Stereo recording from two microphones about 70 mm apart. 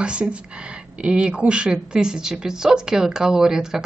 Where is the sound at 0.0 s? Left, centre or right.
Centre.